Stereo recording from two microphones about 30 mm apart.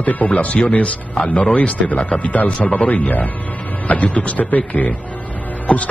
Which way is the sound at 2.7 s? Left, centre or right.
Left.